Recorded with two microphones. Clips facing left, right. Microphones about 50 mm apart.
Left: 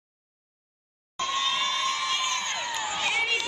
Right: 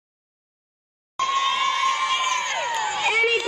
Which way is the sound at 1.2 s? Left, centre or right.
Right.